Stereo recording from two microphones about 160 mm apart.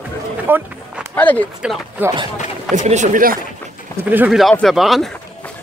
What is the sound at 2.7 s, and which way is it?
Speech, 50° right (ahead or behind).